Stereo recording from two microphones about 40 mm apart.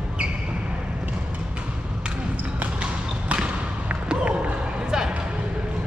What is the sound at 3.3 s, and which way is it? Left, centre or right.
Basketball bounce, right.